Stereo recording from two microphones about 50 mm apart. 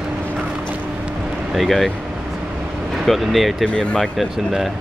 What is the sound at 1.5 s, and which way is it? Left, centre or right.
Speech, centre.